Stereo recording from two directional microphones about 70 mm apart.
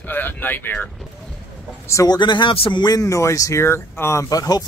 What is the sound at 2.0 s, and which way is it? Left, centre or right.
Speech, left.